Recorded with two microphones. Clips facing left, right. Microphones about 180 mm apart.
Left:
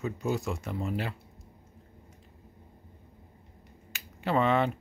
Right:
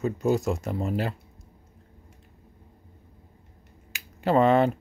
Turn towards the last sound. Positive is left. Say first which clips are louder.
# right 6 dB
turn(degrees=-40)  # may be behind; listen again after turning